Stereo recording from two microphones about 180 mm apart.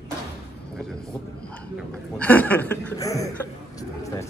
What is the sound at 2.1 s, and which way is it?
Speech, 10° left (ahead or behind).